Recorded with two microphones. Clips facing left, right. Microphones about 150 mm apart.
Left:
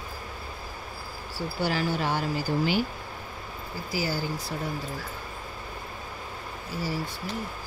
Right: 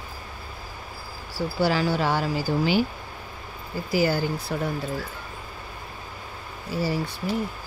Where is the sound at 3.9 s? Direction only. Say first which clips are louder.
Right 7 dB; 60° right (ahead or behind).